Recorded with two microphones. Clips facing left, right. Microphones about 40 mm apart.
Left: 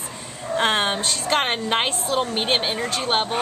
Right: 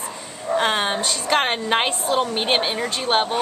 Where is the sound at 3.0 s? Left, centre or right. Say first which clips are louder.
Right 3 dB; centre.